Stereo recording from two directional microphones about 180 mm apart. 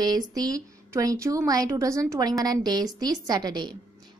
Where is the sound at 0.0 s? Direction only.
20° right (ahead or behind).